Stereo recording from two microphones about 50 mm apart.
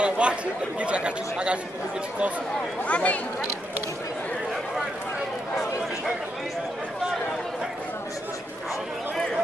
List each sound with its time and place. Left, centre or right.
0.0 s speech: right
2.8 s speech: left